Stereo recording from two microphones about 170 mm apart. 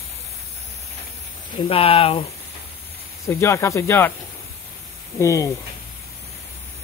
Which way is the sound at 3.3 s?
15° left (ahead or behind).